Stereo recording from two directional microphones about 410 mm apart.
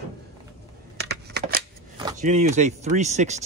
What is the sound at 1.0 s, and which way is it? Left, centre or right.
Computer keyboard, right.